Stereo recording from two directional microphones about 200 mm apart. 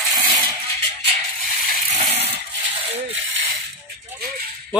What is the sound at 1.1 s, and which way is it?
Rattle, 45° right (ahead or behind).